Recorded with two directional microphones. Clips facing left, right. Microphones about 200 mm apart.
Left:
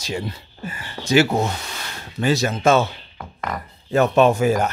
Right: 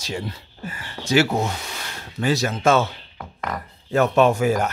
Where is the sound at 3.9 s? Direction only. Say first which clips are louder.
Left 1 dB; 20° left (ahead or behind).